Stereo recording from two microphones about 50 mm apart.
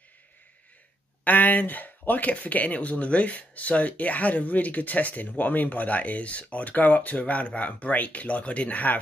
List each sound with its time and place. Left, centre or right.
1.2 s speech: left